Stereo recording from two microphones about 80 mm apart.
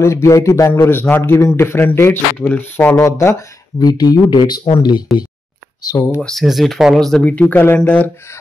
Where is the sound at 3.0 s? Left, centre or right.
Left.